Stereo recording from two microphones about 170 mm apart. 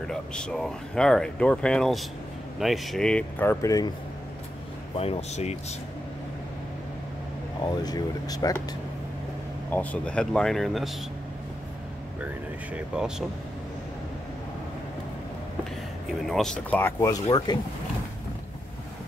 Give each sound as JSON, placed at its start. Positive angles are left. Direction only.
{"t": 0.0, "sound": "speech", "side_deg": 5}
{"t": 4.9, "sound": "speech", "side_deg": 40}
{"t": 7.6, "sound": "speech", "side_deg": 25}
{"t": 9.7, "sound": "speech", "side_deg": 10}
{"t": 12.7, "sound": "speech", "side_deg": -5}
{"t": 16.3, "sound": "speech", "side_deg": 0}
{"t": 17.1, "sound": "speech", "side_deg": 25}